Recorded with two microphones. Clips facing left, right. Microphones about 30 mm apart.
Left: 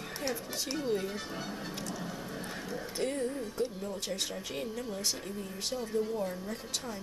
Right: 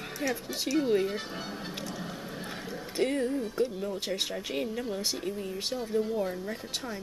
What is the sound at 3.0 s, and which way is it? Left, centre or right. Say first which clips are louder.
A woman's voice: right 6 dB; right.